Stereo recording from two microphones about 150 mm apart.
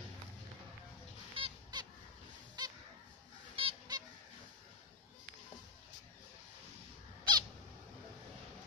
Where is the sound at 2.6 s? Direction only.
30° right (ahead or behind).